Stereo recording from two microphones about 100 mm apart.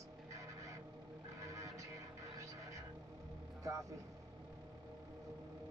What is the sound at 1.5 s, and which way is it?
Music, 35° right (ahead or behind).